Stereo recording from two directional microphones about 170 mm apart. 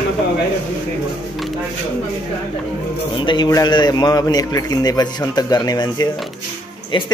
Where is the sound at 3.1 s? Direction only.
25° left (ahead or behind).